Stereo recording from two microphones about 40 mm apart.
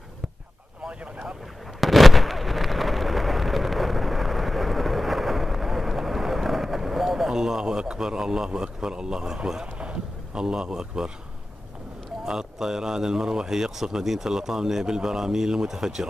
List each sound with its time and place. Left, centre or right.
1.8 s explosion: centre
8.5 s speech: centre
12.3 s a man's voice: centre